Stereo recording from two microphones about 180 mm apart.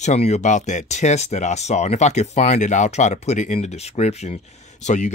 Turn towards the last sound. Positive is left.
turn(degrees=40)  # may be behind; listen again after turning